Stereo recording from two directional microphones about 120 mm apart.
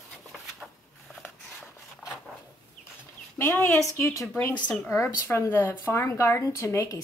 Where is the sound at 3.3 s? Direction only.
20° left (ahead or behind).